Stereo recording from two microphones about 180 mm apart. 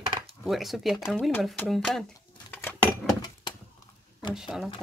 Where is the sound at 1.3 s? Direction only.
10° left (ahead or behind).